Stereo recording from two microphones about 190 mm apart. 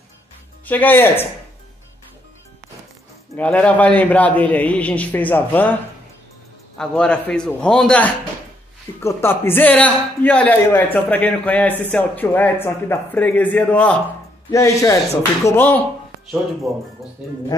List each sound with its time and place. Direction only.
0.7 s speech: 10° left (ahead or behind)
3.3 s speech: 5° left (ahead or behind)
6.8 s a man's voice: 5° left (ahead or behind)